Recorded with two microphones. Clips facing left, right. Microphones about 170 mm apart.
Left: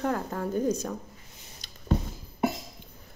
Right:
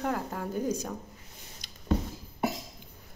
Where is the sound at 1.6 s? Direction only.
15° right (ahead or behind).